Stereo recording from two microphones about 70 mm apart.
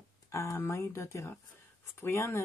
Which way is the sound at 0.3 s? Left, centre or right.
Left.